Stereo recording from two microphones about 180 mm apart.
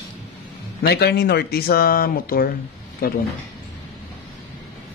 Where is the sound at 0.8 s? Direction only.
65° left (ahead or behind).